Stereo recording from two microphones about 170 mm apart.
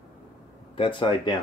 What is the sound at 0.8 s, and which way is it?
Speech, 30° left (ahead or behind).